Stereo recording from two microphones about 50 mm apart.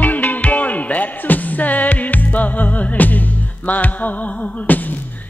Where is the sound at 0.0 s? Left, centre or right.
Left.